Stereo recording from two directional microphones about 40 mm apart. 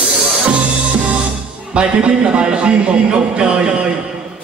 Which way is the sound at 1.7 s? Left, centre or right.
Right.